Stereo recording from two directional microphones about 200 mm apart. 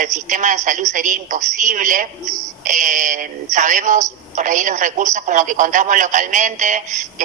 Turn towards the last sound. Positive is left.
turn(degrees=-35)  # may be behind; listen again after turning